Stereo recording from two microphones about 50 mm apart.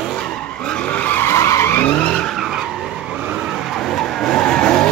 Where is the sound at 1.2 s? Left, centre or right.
Left.